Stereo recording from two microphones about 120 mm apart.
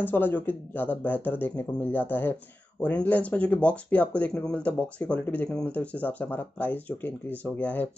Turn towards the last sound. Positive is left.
turn(degrees=15)  # may be behind; listen again after turning